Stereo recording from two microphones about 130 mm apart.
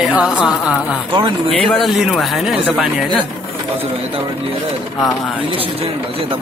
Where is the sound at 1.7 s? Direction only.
Centre (ahead or behind).